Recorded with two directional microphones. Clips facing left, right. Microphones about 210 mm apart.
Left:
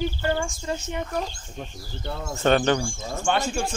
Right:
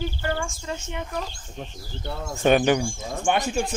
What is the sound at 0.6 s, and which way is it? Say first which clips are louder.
Speech: left 3 dB; 40° left (ahead or behind).